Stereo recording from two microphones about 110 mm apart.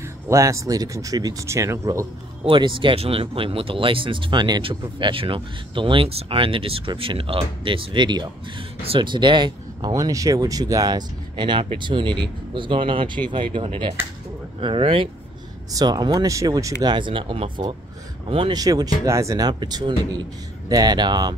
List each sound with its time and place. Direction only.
0.3 s speech: 30° right (ahead or behind)
2.4 s speech: 50° right (ahead or behind)
9.9 s speech: 30° right (ahead or behind); by 15.0 s 55° right (ahead or behind)
15.7 s speech: 40° right (ahead or behind)
16.8 s speech: 45° right (ahead or behind)
18.5 s speech: 35° right (ahead or behind)